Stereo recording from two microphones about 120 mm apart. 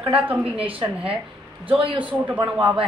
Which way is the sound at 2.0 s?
10° right (ahead or behind).